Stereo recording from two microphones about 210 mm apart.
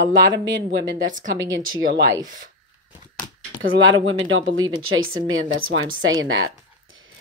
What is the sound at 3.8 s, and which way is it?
Speech, 65° right (ahead or behind).